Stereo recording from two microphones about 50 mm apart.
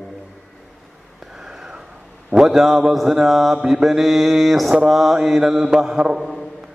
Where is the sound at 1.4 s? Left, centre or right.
Centre.